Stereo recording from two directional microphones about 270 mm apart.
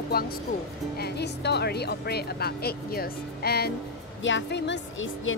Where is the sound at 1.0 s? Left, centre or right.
Left.